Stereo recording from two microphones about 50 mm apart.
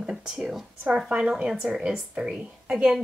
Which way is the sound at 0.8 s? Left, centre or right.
Right.